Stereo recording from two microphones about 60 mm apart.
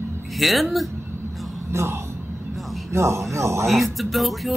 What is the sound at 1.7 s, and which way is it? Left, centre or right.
Speech, right.